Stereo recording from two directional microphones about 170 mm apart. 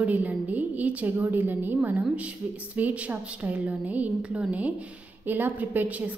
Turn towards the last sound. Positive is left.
turn(degrees=-10)  # may be behind; listen again after turning